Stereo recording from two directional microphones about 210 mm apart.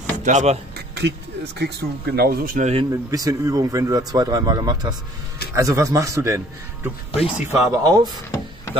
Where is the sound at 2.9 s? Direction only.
15° right (ahead or behind).